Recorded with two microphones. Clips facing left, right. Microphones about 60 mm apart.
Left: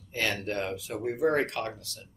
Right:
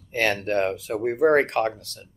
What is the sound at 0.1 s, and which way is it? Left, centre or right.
Speech, right.